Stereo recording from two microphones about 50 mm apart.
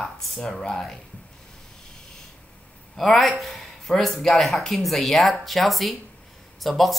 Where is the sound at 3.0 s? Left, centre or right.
Centre.